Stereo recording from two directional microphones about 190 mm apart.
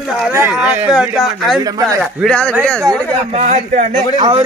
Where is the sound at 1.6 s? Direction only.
20° right (ahead or behind).